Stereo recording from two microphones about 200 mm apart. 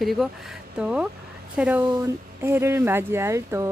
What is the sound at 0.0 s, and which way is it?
Speech, centre (ahead or behind).